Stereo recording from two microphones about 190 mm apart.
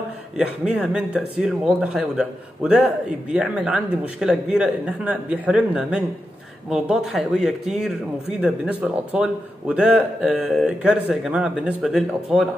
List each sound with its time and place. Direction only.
0.4 s speech: 5° right (ahead or behind)